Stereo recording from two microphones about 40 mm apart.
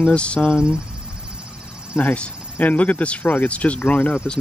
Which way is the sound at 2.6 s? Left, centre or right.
Left.